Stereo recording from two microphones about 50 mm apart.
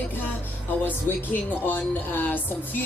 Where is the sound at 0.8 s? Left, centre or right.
Left.